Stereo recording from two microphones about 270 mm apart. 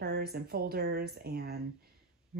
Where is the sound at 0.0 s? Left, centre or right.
Right.